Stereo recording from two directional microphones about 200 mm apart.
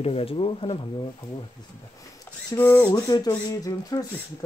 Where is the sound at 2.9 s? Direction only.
20° left (ahead or behind).